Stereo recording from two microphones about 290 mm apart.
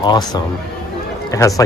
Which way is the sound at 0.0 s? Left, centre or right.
Centre.